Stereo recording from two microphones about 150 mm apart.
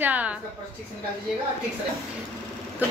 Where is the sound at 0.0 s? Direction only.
10° right (ahead or behind).